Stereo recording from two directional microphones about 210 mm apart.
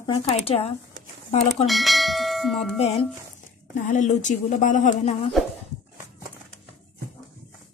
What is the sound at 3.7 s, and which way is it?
Speech, 35° left (ahead or behind).